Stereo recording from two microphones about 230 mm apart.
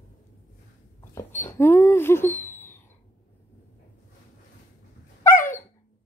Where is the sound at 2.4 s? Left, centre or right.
Centre.